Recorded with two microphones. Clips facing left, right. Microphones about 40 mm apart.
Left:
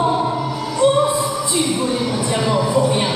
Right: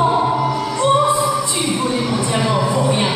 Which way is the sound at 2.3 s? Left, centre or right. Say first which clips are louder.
Left 1 dB; centre.